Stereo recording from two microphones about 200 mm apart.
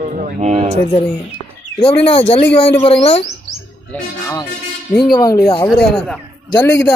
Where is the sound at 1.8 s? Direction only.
30° left (ahead or behind).